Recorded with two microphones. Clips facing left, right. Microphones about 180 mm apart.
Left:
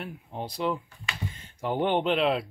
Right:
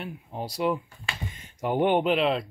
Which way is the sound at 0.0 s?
5° right (ahead or behind).